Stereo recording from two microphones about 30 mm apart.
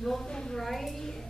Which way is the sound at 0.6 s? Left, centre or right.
Centre.